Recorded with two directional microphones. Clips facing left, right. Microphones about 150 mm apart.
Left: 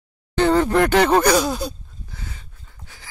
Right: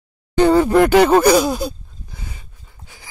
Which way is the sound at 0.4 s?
10° right (ahead or behind).